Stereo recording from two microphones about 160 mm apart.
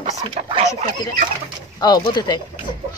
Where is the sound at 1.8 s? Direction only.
25° left (ahead or behind).